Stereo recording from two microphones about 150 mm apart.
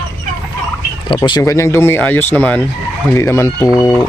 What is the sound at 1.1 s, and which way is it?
Speech, 30° left (ahead or behind).